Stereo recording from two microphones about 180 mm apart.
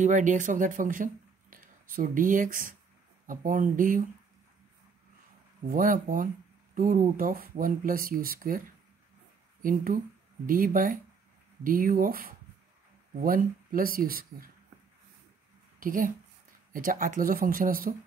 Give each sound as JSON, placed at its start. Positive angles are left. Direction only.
{"t": 0.0, "sound": "speech", "side_deg": -45}
{"t": 5.7, "sound": "speech", "side_deg": -50}
{"t": 15.8, "sound": "speech", "side_deg": -50}